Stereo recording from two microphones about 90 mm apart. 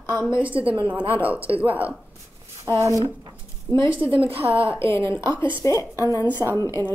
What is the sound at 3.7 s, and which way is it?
Speech, 55° right (ahead or behind).